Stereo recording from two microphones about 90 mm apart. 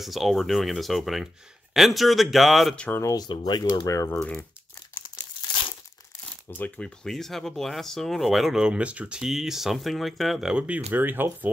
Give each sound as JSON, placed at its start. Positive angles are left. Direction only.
{"t": 0.0, "sound": "speech", "side_deg": 0}
{"t": 2.9, "sound": "speech", "side_deg": 35}
{"t": 3.2, "sound": "speech", "side_deg": 50}
{"t": 4.1, "sound": "speech", "side_deg": 15}
{"t": 4.9, "sound": "crumpling", "side_deg": 55}
{"t": 6.2, "sound": "shuffling cards", "side_deg": 15}
{"t": 7.1, "sound": "speech", "side_deg": 5}
{"t": 10.5, "sound": "speech", "side_deg": -20}